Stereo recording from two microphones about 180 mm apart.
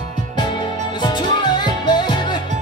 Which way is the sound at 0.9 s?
25° left (ahead or behind).